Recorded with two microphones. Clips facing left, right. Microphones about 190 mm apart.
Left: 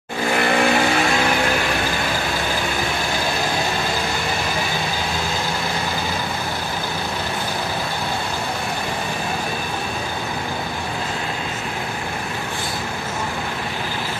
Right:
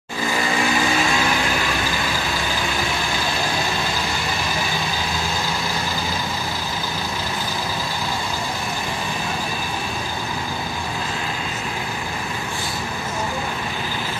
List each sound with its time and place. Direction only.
0.3 s vehicle: 65° left (ahead or behind)